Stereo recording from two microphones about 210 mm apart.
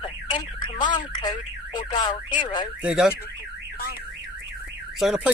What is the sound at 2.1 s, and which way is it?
Speech, 35° left (ahead or behind).